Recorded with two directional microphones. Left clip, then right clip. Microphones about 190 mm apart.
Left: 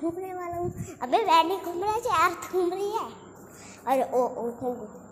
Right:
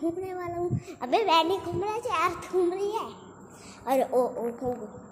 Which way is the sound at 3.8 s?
15° right (ahead or behind).